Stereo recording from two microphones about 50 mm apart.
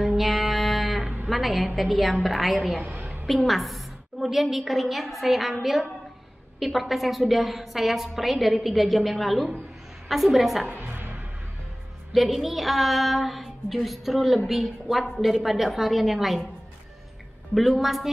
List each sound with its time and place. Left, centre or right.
0.0 s music: centre
1.3 s a woman's voice: centre
2.8 s a woman's voice: right
3.3 s a woman's voice: centre
10.9 s music: right
12.1 s a woman's voice: centre
17.6 s a woman's voice: centre